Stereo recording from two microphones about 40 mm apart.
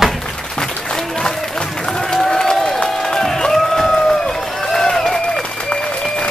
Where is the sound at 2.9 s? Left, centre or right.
Centre.